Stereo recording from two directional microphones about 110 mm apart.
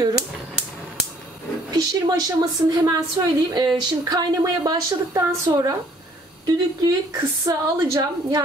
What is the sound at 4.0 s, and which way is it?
A woman's voice, 35° right (ahead or behind).